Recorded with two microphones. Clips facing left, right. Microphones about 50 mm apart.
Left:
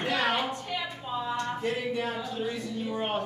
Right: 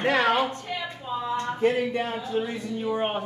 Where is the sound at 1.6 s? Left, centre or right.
Right.